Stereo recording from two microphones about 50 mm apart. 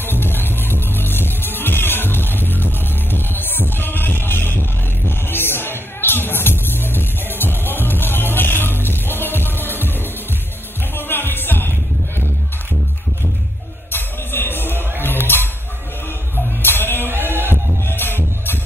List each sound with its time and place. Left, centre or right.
0.0 s music: left
11.0 s music: left
13.9 s music: left
16.6 s music: left
17.1 s heart sounds: right
17.8 s music: left